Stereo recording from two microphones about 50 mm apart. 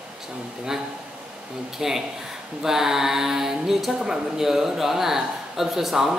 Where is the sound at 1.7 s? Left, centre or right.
Centre.